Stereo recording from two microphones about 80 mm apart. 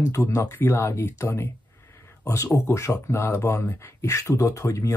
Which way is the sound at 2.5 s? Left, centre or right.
Left.